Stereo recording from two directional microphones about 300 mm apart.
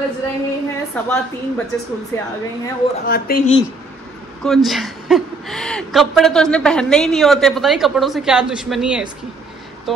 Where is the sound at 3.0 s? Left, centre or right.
Left.